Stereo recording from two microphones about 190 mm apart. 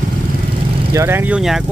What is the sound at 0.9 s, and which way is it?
Speech, 15° right (ahead or behind).